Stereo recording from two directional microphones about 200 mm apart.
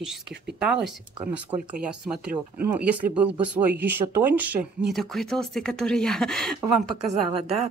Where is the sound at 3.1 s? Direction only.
5° right (ahead or behind).